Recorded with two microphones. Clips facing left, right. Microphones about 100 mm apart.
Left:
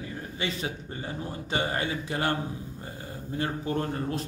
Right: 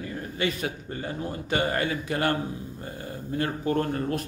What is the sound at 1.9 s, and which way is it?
Speech, 25° left (ahead or behind).